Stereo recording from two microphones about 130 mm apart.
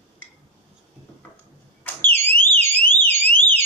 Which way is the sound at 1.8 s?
15° left (ahead or behind).